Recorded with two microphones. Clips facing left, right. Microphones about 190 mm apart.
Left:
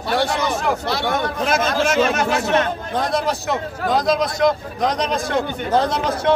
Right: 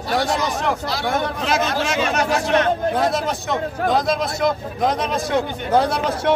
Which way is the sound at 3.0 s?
Centre (ahead or behind).